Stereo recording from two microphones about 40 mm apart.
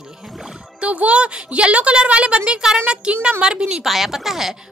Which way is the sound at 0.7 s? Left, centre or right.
Right.